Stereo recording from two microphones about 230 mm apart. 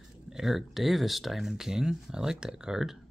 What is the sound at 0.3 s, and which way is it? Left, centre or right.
Speech, centre.